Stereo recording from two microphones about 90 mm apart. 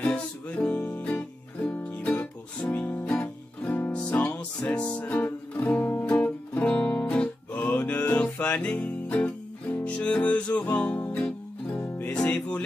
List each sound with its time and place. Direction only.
0.0 s music: 15° left (ahead or behind)